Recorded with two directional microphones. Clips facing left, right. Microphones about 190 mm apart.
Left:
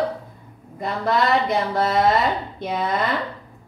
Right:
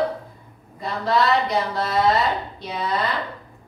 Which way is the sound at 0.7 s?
50° left (ahead or behind).